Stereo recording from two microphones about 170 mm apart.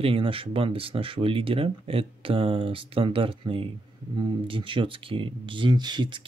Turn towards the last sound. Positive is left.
turn(degrees=-25)  # may be behind; listen again after turning